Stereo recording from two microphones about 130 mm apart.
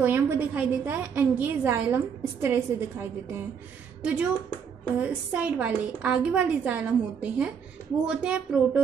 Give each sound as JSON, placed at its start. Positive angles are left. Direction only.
{"t": 0.0, "sound": "a woman's voice", "side_deg": -15}